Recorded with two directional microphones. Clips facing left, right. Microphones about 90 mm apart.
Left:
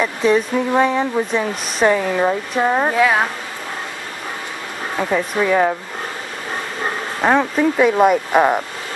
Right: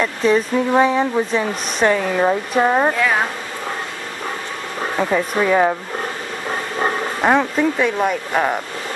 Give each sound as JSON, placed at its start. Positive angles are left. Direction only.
{"t": 0.0, "sound": "speech", "side_deg": 0}
{"t": 2.9, "sound": "speech", "side_deg": 10}
{"t": 4.9, "sound": "speech", "side_deg": -5}
{"t": 7.2, "sound": "speech", "side_deg": 0}